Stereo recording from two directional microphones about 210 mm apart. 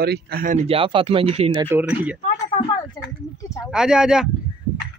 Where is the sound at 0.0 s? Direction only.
50° right (ahead or behind).